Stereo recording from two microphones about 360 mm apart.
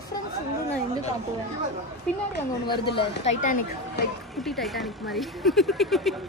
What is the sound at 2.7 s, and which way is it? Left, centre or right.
Speech, centre.